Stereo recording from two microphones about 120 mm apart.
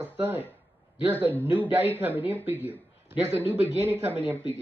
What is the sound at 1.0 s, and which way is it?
Speech, 15° right (ahead or behind).